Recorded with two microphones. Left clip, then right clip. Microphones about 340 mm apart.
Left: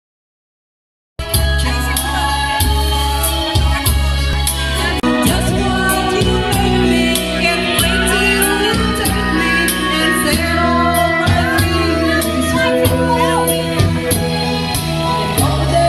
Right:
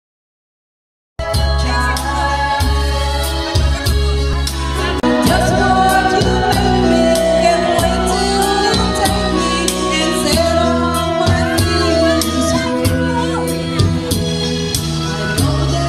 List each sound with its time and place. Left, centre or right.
5.0 s music: right; by 10.7 s centre